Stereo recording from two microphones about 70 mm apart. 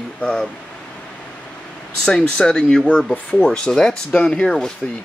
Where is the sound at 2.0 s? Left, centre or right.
Centre.